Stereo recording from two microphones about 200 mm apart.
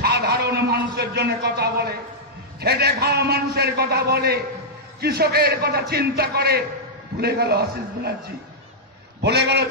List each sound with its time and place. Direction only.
0.0 s a sound: 55° right (ahead or behind)
2.6 s a man's voice: 55° right (ahead or behind)
9.2 s a man's voice: 55° right (ahead or behind)